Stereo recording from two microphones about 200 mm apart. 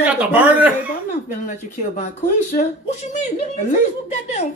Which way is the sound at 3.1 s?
35° left (ahead or behind).